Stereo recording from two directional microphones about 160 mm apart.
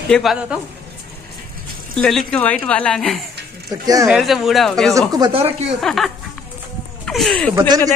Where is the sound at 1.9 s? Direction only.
5° left (ahead or behind).